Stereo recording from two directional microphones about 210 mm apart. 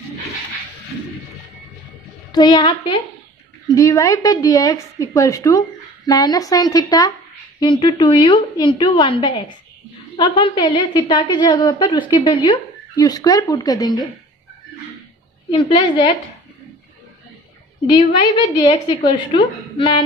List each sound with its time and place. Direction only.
2.3 s a woman's voice: 20° left (ahead or behind)
15.5 s a woman's voice: 25° left (ahead or behind)
18.6 s a woman's voice: 20° left (ahead or behind)